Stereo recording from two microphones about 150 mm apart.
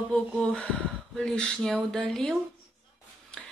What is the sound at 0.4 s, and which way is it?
Speech, 5° left (ahead or behind).